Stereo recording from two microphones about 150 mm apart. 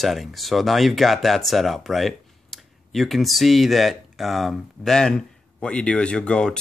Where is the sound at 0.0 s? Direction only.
Centre (ahead or behind).